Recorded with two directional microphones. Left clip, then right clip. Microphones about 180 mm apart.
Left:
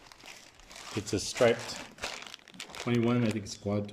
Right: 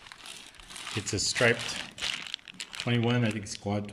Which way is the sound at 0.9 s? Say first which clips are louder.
Even; 10° left (ahead or behind).